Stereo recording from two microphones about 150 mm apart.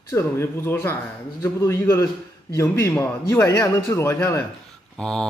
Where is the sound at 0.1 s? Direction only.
15° left (ahead or behind).